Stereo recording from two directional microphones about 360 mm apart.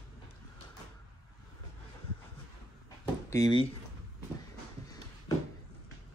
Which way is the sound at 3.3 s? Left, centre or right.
Centre.